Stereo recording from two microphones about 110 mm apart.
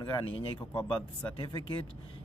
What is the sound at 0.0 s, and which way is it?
Speech, 50° left (ahead or behind).